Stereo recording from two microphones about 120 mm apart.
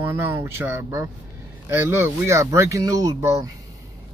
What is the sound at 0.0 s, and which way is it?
Speech, 20° right (ahead or behind).